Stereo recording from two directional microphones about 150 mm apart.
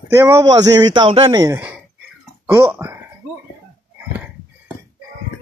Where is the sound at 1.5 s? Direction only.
10° right (ahead or behind).